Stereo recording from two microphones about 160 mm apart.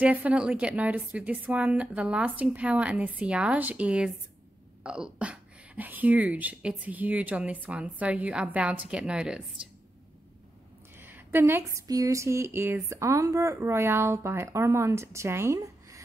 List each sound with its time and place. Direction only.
0.0 s speech: 10° right (ahead or behind)
11.0 s speech: 10° right (ahead or behind)